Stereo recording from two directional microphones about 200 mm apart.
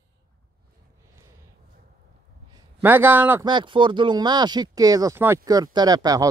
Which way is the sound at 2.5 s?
10° right (ahead or behind).